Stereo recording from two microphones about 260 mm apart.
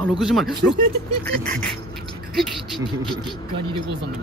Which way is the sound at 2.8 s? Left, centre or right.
Centre.